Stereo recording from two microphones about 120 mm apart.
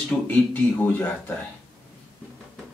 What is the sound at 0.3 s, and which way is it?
A man's voice, 15° left (ahead or behind).